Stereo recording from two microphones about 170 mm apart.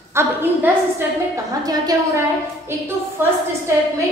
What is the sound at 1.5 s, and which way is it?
Speech, 20° right (ahead or behind).